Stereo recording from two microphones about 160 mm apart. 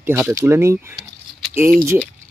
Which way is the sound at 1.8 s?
15° right (ahead or behind).